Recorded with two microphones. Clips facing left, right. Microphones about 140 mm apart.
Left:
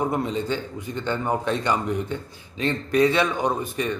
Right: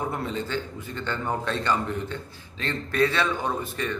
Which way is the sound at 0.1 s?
20° left (ahead or behind).